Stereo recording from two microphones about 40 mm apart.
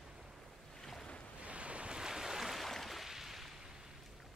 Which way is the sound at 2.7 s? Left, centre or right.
Centre.